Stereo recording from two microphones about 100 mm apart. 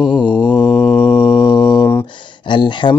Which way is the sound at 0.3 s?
20° left (ahead or behind).